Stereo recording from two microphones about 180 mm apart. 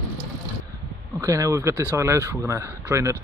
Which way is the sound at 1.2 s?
20° right (ahead or behind).